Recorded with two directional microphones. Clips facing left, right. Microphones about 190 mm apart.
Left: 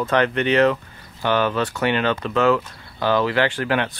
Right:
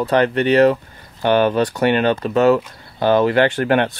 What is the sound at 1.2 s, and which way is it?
Speech, 50° right (ahead or behind).